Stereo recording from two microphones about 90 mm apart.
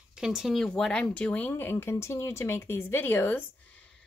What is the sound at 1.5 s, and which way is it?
Speech, 25° left (ahead or behind).